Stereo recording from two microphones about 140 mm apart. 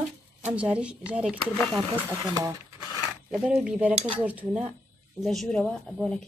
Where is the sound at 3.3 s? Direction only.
5° right (ahead or behind).